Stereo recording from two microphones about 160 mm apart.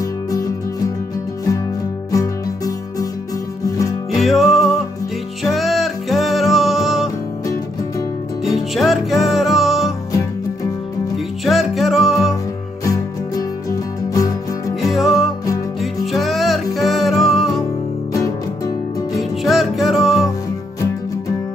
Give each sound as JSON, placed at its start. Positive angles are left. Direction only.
{"t": 0.0, "sound": "music", "side_deg": 20}
{"t": 2.1, "sound": "music", "side_deg": 20}
{"t": 4.2, "sound": "music", "side_deg": 0}
{"t": 8.5, "sound": "music", "side_deg": 0}
{"t": 11.4, "sound": "music", "side_deg": 0}
{"t": 12.8, "sound": "music", "side_deg": 20}
{"t": 14.8, "sound": "music", "side_deg": 0}
{"t": 19.1, "sound": "music", "side_deg": 0}